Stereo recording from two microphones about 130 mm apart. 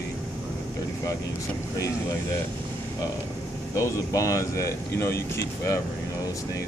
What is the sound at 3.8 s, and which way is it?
Speech, 25° left (ahead or behind).